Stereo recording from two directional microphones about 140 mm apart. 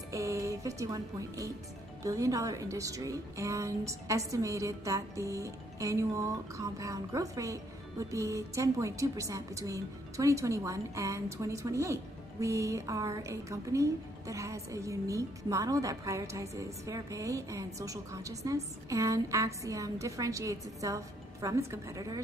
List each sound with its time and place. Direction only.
0.1 s a woman's voice: 20° right (ahead or behind)